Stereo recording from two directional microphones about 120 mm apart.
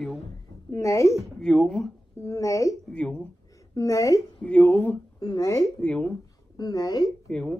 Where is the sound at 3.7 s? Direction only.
30° left (ahead or behind).